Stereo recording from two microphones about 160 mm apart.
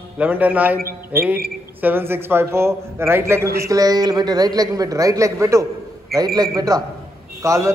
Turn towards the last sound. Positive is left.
turn(degrees=-20)  # may be behind; listen again after turning